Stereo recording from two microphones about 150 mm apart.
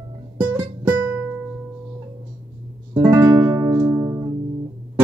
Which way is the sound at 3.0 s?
15° right (ahead or behind).